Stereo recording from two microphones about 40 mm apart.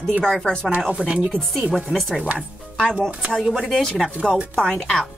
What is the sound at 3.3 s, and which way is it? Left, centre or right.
Speech, centre.